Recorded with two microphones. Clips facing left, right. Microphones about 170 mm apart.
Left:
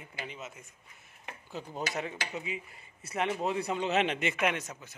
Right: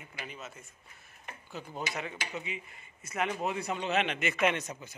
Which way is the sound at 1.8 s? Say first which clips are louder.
Left 3 dB; 35° left (ahead or behind).